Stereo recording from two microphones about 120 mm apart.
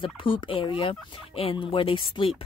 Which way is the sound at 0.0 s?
45° left (ahead or behind).